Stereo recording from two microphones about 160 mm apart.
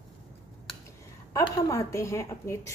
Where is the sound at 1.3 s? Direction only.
20° left (ahead or behind).